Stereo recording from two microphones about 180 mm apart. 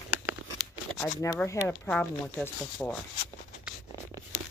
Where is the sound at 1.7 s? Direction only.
5° left (ahead or behind).